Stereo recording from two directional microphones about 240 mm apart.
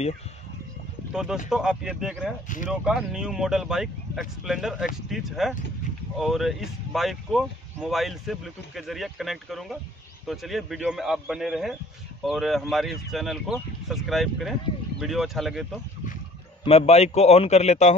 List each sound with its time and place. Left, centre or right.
1.1 s speech: centre
2.4 s speech: left
2.7 s speech: centre
16.6 s a man's voice: left